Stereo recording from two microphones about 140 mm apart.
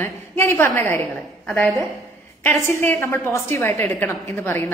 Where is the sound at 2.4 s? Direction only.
20° left (ahead or behind).